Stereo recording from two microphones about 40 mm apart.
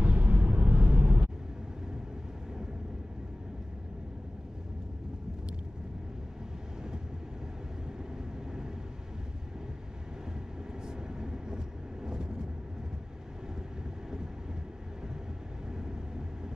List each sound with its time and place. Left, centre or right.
0.0 s vehicle: right
8.5 s vehicle: centre
10.9 s vehicle: centre
15.7 s vehicle: centre